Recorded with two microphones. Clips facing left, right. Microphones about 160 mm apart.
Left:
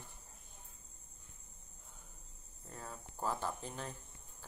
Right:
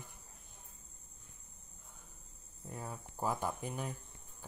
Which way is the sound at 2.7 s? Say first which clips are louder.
Right 4 dB; 10° right (ahead or behind).